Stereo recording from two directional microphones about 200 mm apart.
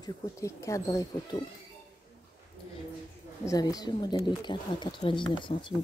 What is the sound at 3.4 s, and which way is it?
Speech, 20° left (ahead or behind).